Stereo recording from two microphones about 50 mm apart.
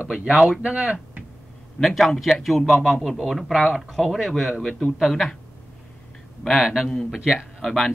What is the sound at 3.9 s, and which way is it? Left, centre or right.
Speech, centre.